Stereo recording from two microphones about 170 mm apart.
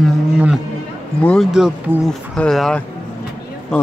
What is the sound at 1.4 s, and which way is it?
Speech, 5° right (ahead or behind).